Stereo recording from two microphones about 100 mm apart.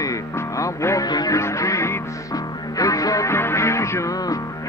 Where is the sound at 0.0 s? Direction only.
35° left (ahead or behind).